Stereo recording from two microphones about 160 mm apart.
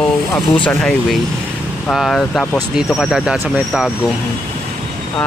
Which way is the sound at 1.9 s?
5° left (ahead or behind).